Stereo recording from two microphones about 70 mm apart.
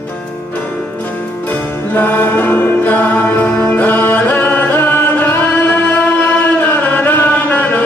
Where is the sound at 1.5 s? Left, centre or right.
Left.